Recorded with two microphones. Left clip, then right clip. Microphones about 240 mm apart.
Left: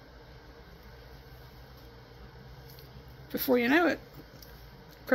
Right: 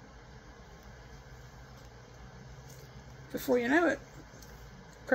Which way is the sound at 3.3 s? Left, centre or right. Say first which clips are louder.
Left 2 dB; left.